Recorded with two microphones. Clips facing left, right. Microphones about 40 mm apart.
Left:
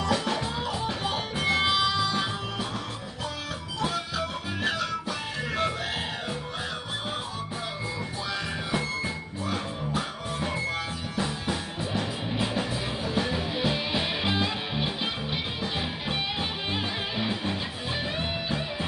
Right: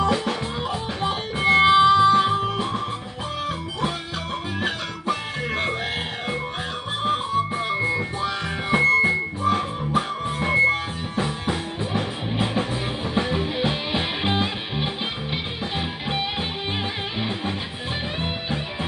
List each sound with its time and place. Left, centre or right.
0.1 s music: centre; by 2.8 s right
4.6 s music: right
7.8 s music: right